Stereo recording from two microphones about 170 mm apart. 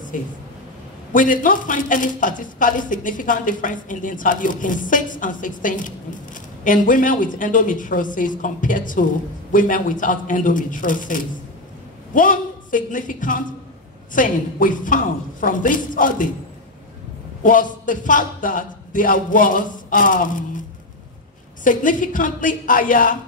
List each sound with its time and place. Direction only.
0.1 s a man's voice: 50° left (ahead or behind)
17.4 s speech: 50° left (ahead or behind)
21.6 s speech: 50° left (ahead or behind)